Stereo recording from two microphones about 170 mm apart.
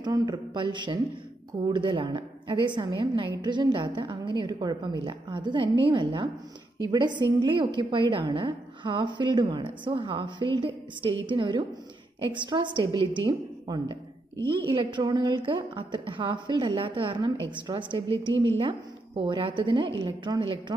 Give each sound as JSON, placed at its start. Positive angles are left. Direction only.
{"t": 0.0, "sound": "a woman's voice", "side_deg": -25}
{"t": 18.3, "sound": "a woman's voice", "side_deg": -90}
{"t": 18.6, "sound": "a woman's voice", "side_deg": -30}